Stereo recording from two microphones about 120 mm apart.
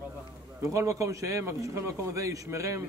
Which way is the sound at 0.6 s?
25° right (ahead or behind).